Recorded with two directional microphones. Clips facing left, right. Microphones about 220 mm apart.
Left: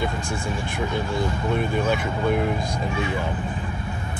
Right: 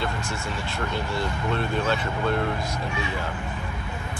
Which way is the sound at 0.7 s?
15° left (ahead or behind).